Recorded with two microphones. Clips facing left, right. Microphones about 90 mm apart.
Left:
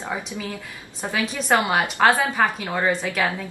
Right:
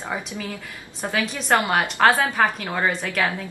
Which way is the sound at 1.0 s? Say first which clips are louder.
Even; centre (ahead or behind).